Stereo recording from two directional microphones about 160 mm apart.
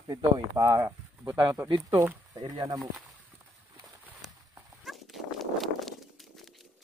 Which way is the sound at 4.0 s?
5° right (ahead or behind).